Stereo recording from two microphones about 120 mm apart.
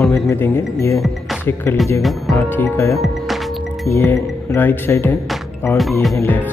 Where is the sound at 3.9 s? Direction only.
20° left (ahead or behind).